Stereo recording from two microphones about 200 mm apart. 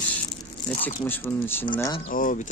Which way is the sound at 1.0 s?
10° left (ahead or behind).